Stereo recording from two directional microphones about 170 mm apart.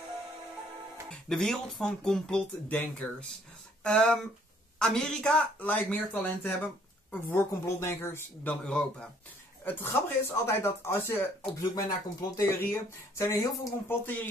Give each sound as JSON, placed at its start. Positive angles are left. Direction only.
{"t": 1.0, "sound": "speech", "side_deg": 5}